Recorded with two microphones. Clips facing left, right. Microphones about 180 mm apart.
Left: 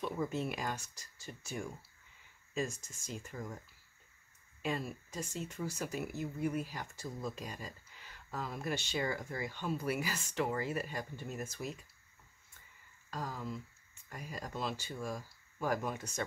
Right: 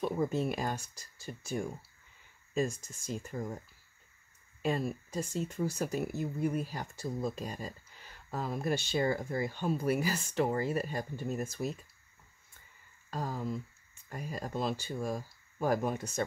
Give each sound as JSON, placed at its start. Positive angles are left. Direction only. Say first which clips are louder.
{"t": 0.0, "sound": "speech", "louder": "right 5 dB", "side_deg": -40}
{"t": 13.1, "sound": "speech", "louder": "right 5 dB", "side_deg": -40}